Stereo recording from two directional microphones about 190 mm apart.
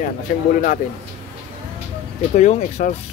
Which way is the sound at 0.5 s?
45° left (ahead or behind).